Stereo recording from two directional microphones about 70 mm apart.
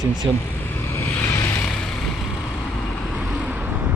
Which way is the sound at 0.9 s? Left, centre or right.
Left.